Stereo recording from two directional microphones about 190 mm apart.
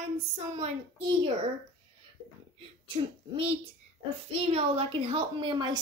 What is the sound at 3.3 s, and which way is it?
A woman's voice, 30° right (ahead or behind).